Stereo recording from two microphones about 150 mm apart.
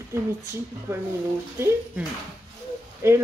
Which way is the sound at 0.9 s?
20° right (ahead or behind).